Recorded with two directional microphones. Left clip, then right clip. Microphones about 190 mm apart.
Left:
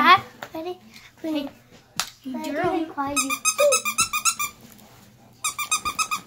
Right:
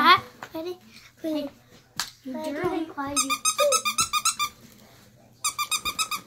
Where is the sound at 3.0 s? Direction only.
Centre (ahead or behind).